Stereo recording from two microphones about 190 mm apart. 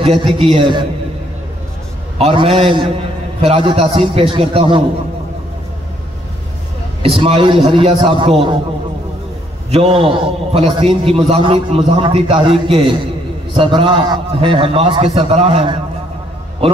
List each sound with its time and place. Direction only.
0.0 s a man's voice: 30° right (ahead or behind)
2.1 s a man's voice: 30° right (ahead or behind)
7.2 s a man's voice: 30° right (ahead or behind)
9.7 s a man's voice: 30° right (ahead or behind)